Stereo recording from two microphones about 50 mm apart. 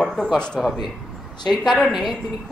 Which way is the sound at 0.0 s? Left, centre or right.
Centre.